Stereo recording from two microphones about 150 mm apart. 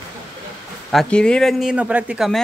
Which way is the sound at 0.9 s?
5° left (ahead or behind).